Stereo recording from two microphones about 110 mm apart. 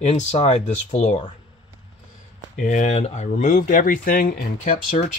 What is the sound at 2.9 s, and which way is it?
Speech, 80° left.